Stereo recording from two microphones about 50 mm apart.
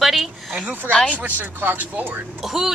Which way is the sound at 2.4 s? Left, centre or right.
Centre.